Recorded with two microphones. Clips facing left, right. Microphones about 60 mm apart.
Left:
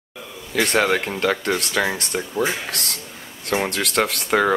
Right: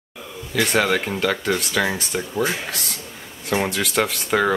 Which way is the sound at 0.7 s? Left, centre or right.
Centre.